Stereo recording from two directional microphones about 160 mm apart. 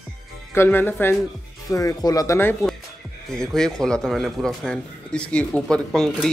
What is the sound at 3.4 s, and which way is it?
A man's voice, 5° left (ahead or behind).